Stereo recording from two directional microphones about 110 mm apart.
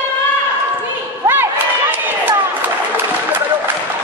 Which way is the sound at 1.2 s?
20° right (ahead or behind).